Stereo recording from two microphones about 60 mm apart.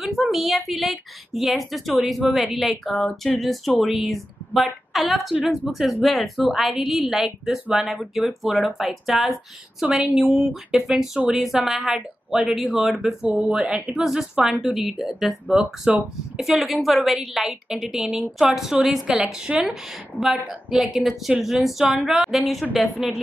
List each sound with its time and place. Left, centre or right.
0.3 s a woman's voice: centre
13.5 s speech: centre
14.0 s a woman's voice: centre